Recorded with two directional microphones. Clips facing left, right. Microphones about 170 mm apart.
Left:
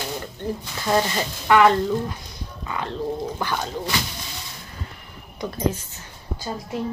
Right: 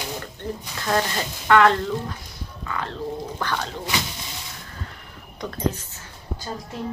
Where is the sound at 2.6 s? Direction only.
20° left (ahead or behind).